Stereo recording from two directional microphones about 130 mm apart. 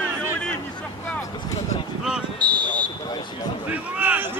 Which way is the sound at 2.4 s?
10° left (ahead or behind).